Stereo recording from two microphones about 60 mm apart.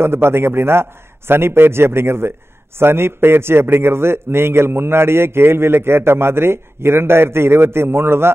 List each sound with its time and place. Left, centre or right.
0.0 s a man's voice: right